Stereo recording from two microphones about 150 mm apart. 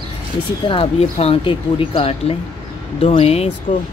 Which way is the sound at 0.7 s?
40° left (ahead or behind).